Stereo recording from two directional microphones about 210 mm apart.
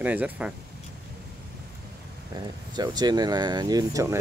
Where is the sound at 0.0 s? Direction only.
5° right (ahead or behind).